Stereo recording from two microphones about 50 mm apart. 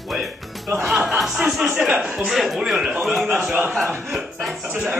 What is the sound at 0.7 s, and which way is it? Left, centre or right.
Speech, centre.